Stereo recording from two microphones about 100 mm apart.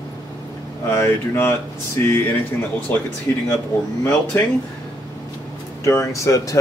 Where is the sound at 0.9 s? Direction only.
25° left (ahead or behind).